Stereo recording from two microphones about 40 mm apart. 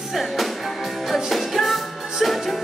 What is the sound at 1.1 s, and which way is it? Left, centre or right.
Music, centre.